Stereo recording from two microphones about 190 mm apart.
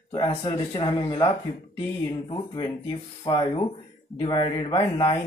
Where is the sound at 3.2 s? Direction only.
25° left (ahead or behind).